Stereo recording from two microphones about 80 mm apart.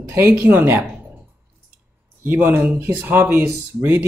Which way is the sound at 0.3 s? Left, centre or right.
Right.